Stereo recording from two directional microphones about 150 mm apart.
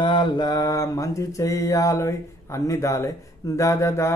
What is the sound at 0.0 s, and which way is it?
Mantra, 30° left (ahead or behind).